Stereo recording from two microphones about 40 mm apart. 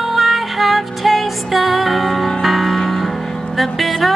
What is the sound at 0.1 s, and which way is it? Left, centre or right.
Music, centre.